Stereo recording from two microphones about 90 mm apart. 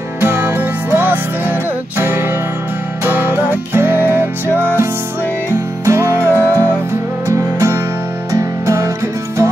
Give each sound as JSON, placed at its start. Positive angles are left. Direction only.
{"t": 0.2, "sound": "music", "side_deg": -25}
{"t": 4.5, "sound": "music", "side_deg": 20}
{"t": 5.5, "sound": "music", "side_deg": -30}
{"t": 6.1, "sound": "music", "side_deg": 20}
{"t": 7.2, "sound": "music", "side_deg": -30}